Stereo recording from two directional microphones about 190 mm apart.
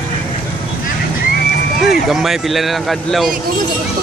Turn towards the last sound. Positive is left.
turn(degrees=0)  # may be behind; listen again after turning